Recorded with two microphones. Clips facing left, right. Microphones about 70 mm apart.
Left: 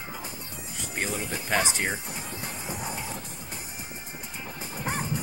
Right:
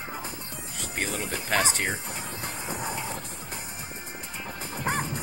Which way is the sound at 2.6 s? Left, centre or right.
Right.